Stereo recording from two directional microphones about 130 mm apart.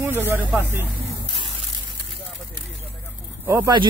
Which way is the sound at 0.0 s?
15° right (ahead or behind).